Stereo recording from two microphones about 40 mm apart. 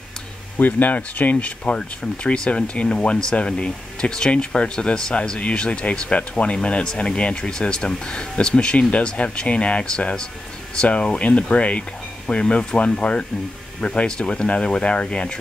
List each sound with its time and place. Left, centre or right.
0.6 s speech: left
10.9 s speech: left